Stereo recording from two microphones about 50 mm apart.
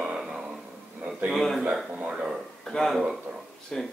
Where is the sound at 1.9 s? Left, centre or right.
Right.